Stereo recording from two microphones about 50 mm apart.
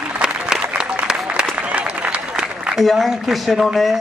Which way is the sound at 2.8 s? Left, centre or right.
Centre.